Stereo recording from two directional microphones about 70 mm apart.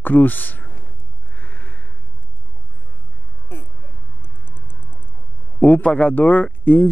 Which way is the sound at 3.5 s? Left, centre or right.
Left.